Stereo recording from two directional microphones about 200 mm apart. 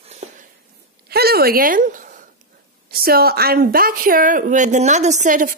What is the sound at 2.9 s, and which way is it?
Speech, 50° right (ahead or behind).